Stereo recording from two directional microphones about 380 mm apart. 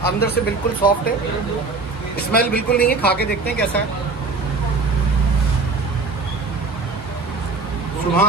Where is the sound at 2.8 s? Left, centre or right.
Left.